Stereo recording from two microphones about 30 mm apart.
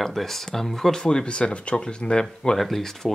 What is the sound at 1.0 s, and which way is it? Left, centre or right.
Speech, left.